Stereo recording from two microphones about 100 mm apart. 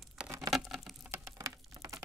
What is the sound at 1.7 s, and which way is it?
Patter, 30° right (ahead or behind).